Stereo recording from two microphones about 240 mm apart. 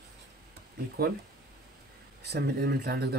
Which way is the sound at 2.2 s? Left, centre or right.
Right.